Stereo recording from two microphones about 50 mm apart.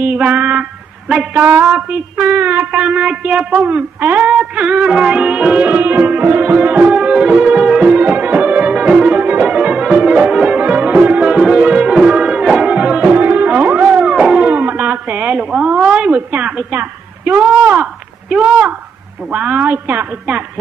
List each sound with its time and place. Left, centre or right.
0.0 s a sound: right
1.6 s speech: right
4.3 s speech: right
5.7 s music: right
6.9 s music: centre
8.0 s music: right
11.3 s music: centre
13.1 s music: right
13.9 s music: centre
14.5 s a sound: right
16.7 s a woman's voice: right
18.3 s speech: centre
19.3 s music: right